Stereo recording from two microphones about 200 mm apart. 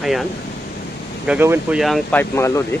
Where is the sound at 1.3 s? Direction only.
5° right (ahead or behind); by 2.6 s 15° left (ahead or behind).